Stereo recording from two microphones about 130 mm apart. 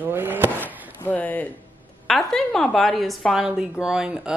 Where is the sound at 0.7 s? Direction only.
15° left (ahead or behind).